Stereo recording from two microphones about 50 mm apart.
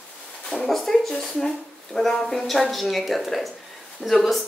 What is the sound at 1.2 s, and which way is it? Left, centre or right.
A woman's voice, centre.